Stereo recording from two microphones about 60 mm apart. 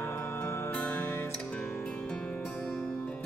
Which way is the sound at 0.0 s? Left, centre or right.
Left.